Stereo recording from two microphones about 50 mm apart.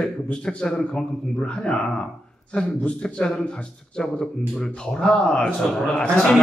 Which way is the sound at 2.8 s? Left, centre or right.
Left.